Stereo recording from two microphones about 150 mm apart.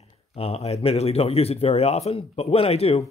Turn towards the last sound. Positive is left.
turn(degrees=45)  # may be behind; listen again after turning